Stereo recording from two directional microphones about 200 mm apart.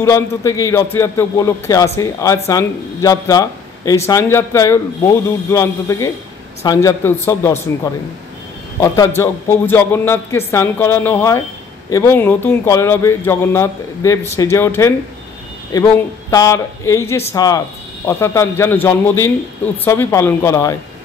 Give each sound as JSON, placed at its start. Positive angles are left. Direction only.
{"t": 0.0, "sound": "speech", "side_deg": 15}